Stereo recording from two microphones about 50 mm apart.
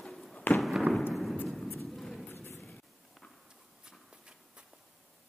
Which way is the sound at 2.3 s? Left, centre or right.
Left.